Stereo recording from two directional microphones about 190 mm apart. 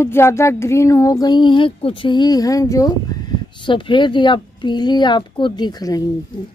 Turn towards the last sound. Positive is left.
turn(degrees=20)  # may be behind; listen again after turning